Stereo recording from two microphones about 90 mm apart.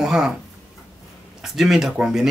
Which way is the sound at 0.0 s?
5° right (ahead or behind).